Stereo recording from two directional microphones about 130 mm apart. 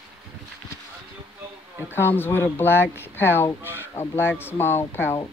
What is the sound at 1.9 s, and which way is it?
Speech, 15° left (ahead or behind).